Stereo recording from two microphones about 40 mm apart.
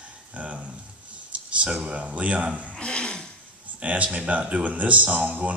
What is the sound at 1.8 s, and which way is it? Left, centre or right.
Speech, right.